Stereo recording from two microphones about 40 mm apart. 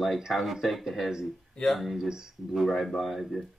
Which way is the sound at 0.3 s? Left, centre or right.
Centre.